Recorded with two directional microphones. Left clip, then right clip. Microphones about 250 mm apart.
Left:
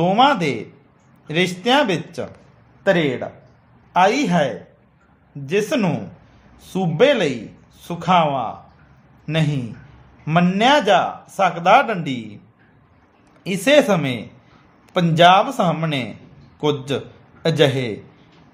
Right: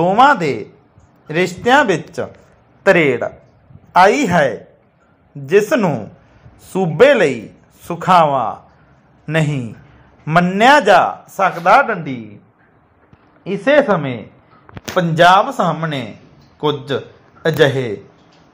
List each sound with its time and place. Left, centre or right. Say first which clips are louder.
0.0 s a man's voice: right 5 dB; centre
11.3 s a man's voice: right 2 dB; centre
13.4 s a man's voice: right 2 dB; centre